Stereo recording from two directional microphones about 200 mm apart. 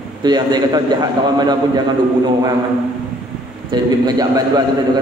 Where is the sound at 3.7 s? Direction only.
20° right (ahead or behind).